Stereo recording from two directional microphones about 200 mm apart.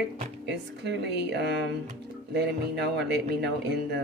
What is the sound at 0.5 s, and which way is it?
Speech, 60° right (ahead or behind).